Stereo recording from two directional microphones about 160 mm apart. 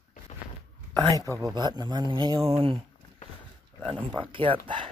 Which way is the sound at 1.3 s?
25° right (ahead or behind).